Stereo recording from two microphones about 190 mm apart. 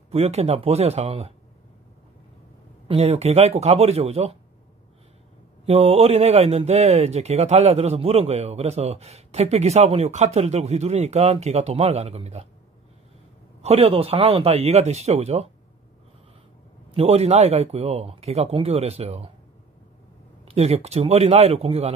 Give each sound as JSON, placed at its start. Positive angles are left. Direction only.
{"t": 0.1, "sound": "speech", "side_deg": -35}
{"t": 2.9, "sound": "speech", "side_deg": -35}
{"t": 5.7, "sound": "speech", "side_deg": -30}
{"t": 13.6, "sound": "speech", "side_deg": -35}
{"t": 16.9, "sound": "speech", "side_deg": -30}
{"t": 20.4, "sound": "speech", "side_deg": -35}